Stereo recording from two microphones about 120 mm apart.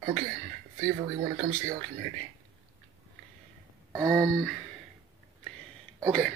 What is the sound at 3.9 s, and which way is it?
Speech, 10° left (ahead or behind).